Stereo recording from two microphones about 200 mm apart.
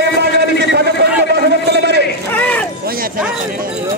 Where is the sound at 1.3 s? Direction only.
55° right (ahead or behind).